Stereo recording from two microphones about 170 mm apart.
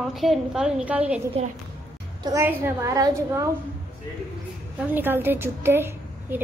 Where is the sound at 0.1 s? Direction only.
Centre (ahead or behind).